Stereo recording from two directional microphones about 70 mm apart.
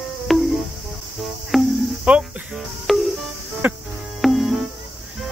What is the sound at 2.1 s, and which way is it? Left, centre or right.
Cricket, centre.